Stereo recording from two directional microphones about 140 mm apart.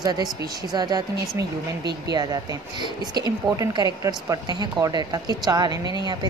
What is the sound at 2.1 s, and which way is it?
A woman's voice, 30° right (ahead or behind).